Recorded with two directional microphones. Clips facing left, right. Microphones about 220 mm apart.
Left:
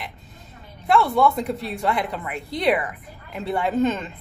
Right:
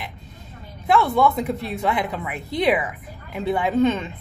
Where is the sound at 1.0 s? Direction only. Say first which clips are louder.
Right 1 dB; centre (ahead or behind).